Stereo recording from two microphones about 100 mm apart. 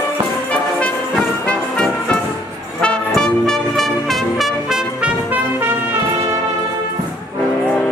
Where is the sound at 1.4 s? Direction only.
10° left (ahead or behind); by 5.1 s 5° right (ahead or behind).